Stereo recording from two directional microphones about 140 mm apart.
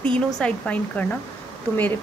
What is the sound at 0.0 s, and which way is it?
Speech, 5° left (ahead or behind).